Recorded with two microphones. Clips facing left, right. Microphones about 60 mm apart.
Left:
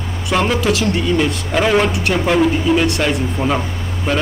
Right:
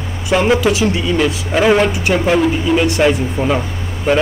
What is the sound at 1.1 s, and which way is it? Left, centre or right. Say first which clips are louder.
Speech: right 2 dB; centre.